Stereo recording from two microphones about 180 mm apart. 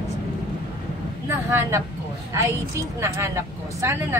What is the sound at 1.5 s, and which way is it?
A woman's voice, 15° right (ahead or behind).